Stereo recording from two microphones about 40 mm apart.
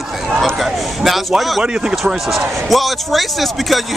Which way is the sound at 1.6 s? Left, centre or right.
Right.